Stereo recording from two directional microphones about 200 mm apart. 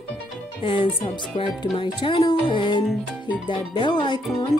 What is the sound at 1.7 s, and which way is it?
Speech, 25° left (ahead or behind).